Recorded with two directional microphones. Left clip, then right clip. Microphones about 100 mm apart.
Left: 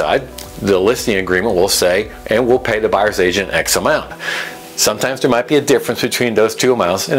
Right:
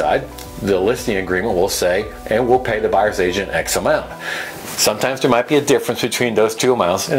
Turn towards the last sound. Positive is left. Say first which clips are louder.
# left 2 dB
turn(degrees=30)  # may be behind; listen again after turning